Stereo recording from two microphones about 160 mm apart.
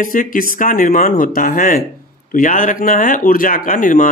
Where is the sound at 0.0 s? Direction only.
55° left (ahead or behind).